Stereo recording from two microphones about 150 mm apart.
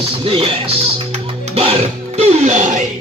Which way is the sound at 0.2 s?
40° right (ahead or behind).